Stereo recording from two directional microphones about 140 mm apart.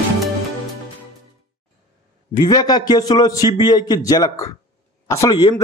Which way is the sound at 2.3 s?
30° left (ahead or behind).